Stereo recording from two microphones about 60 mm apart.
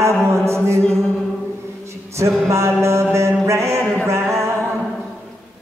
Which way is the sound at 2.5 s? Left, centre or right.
Right.